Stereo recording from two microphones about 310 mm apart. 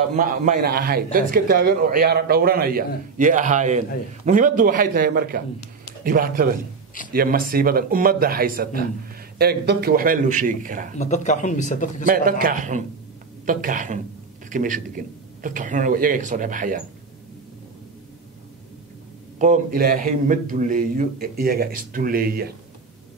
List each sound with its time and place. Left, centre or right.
0.1 s a man's voice: right
11.0 s speech: left
12.1 s a man's voice: right
19.3 s a man's voice: right